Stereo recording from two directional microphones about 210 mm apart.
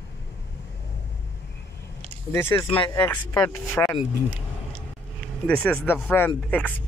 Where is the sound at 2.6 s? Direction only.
25° left (ahead or behind).